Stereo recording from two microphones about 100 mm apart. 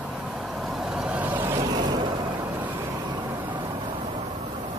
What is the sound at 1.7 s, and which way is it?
Vehicle, 45° right (ahead or behind).